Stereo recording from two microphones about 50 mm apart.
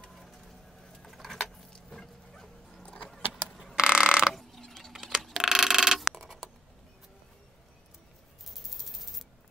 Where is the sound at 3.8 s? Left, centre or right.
Centre.